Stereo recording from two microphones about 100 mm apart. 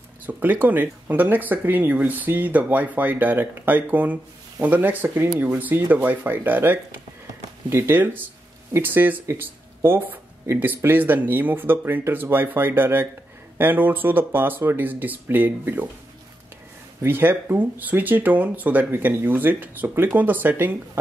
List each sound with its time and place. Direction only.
0.3 s speech: 20° right (ahead or behind)
17.0 s speech: 20° right (ahead or behind)